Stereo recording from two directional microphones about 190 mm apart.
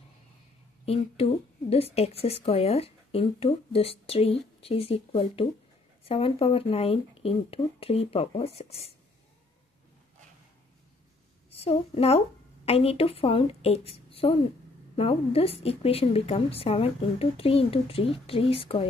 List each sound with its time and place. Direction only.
0.8 s speech: 30° left (ahead or behind)
11.6 s speech: 30° left (ahead or behind)